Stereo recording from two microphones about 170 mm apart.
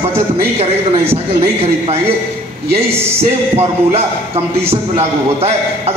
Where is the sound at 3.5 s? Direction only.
35° right (ahead or behind).